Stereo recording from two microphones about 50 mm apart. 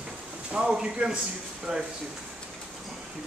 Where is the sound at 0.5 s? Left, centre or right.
Centre.